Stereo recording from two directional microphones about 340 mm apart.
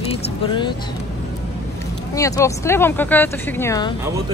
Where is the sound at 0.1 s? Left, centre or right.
Centre.